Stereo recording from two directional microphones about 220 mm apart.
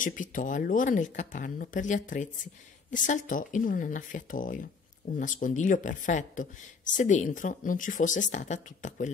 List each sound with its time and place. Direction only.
0.0 s speech: 35° left (ahead or behind)